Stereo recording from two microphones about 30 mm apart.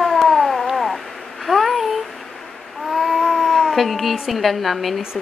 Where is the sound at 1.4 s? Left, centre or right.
Centre.